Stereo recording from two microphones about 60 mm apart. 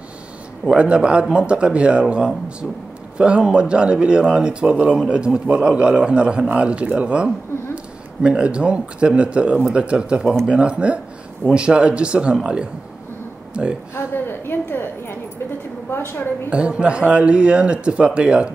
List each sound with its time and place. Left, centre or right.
0.7 s speech: centre
13.5 s speech: centre
13.9 s a woman's voice: left
16.4 s speech: centre